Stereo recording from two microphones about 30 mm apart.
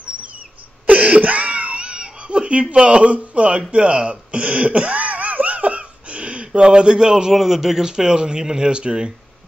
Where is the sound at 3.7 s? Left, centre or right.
Right.